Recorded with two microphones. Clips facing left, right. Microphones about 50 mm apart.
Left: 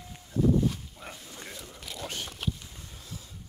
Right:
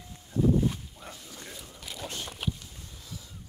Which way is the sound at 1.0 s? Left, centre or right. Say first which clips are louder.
Left 3 dB; left.